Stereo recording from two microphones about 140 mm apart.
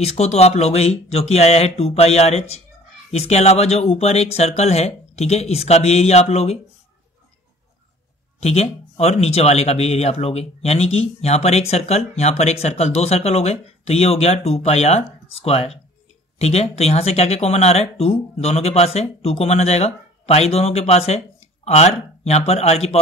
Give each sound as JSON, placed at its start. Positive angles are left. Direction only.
{"t": 0.0, "sound": "speech", "side_deg": 50}
{"t": 8.4, "sound": "speech", "side_deg": 50}